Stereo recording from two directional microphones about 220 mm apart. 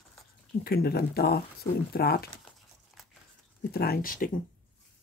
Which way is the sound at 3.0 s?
Centre (ahead or behind).